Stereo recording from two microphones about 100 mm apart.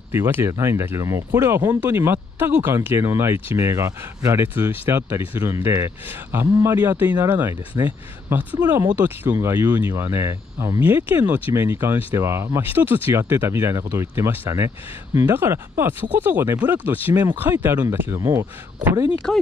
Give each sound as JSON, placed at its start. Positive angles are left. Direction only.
{"t": 0.1, "sound": "speech", "side_deg": -20}
{"t": 4.4, "sound": "speech", "side_deg": -20}
{"t": 18.2, "sound": "speech", "side_deg": -35}
{"t": 19.3, "sound": "speech", "side_deg": 10}